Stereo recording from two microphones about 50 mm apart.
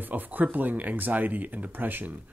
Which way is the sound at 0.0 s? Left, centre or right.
Right.